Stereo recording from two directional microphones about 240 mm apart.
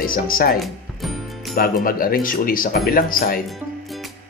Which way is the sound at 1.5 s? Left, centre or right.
Left.